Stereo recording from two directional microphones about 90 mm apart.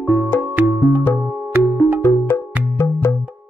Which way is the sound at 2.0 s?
25° left (ahead or behind).